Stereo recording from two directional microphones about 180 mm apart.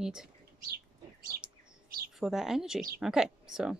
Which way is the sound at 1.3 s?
55° right (ahead or behind).